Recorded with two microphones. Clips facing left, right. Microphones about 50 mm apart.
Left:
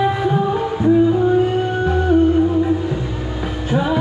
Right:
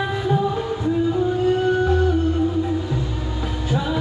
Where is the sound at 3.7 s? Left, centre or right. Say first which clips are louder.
Left 6 dB; left.